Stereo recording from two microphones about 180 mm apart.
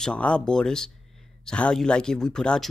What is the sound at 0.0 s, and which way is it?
Speech, 5° left (ahead or behind).